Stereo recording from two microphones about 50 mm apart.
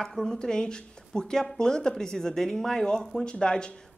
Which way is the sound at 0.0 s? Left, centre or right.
Centre.